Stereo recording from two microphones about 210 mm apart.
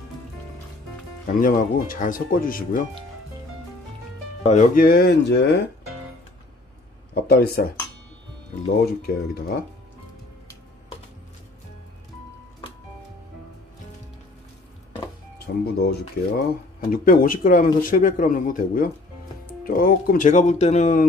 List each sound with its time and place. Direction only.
1.2 s speech: 40° left (ahead or behind)
4.5 s speech: 40° left (ahead or behind); by 5.6 s 55° left (ahead or behind)
7.2 s speech: 45° left (ahead or behind)
8.8 s speech: 50° left (ahead or behind)
15.4 s speech: 50° left (ahead or behind); by 21.0 s 35° left (ahead or behind)